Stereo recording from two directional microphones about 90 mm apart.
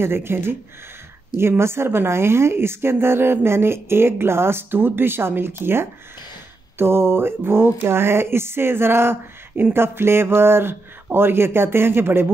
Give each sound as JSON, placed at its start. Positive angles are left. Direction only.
{"t": 0.0, "sound": "speech", "side_deg": -25}
{"t": 6.8, "sound": "speech", "side_deg": -25}